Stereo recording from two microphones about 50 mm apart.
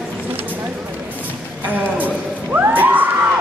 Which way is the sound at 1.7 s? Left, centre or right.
Right.